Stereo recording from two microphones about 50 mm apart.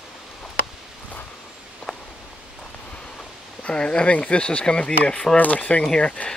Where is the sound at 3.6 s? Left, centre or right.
Centre.